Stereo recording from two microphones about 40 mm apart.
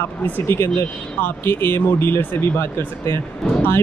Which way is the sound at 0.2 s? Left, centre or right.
Left.